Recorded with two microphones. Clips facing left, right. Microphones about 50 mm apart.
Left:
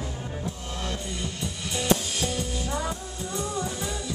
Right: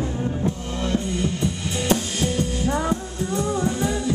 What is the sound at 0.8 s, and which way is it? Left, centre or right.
Music, right.